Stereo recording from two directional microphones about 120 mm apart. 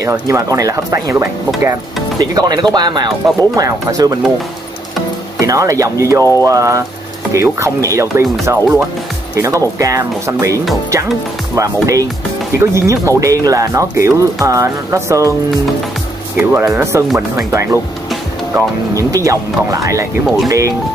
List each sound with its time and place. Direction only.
0.1 s speech: 25° right (ahead or behind)
5.4 s speech: 25° right (ahead or behind)
16.3 s speech: 20° right (ahead or behind)